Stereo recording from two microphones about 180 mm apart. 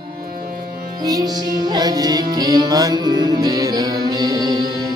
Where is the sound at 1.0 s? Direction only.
20° right (ahead or behind).